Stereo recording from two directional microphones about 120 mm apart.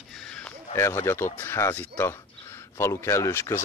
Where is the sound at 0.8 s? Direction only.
20° left (ahead or behind).